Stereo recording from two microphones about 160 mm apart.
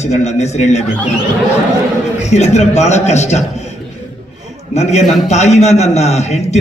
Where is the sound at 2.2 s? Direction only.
45° left (ahead or behind).